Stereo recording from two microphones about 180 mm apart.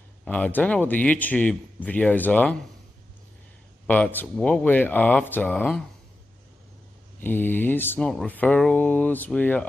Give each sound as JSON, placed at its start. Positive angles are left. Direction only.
{"t": 0.2, "sound": "speech", "side_deg": 10}
{"t": 3.8, "sound": "speech", "side_deg": 10}
{"t": 7.2, "sound": "speech", "side_deg": 10}